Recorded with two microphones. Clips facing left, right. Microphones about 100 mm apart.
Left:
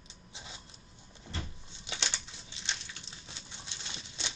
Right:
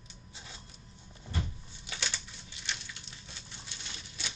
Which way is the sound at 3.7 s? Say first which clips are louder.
Left 2 dB; 25° left (ahead or behind).